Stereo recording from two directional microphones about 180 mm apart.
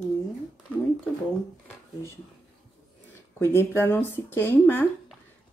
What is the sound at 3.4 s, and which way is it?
Speech, 15° left (ahead or behind).